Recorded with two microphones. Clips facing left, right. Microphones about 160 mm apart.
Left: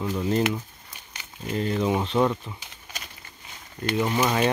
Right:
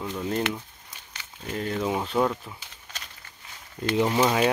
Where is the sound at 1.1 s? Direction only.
10° left (ahead or behind).